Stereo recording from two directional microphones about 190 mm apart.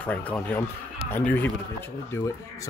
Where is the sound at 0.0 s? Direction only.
5° left (ahead or behind).